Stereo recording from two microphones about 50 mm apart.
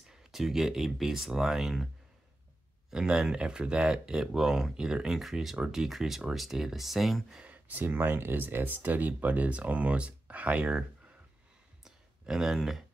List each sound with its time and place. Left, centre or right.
0.1 s speech: centre
2.9 s speech: centre
7.4 s speech: right
11.8 s a sound: centre